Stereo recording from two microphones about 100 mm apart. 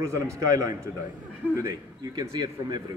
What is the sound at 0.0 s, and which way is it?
Speech, 35° right (ahead or behind).